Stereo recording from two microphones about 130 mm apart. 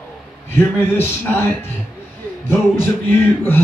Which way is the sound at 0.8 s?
15° left (ahead or behind).